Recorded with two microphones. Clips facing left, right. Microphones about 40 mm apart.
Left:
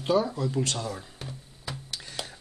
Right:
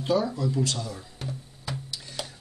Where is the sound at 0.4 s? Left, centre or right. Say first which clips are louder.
Right 1 dB; left.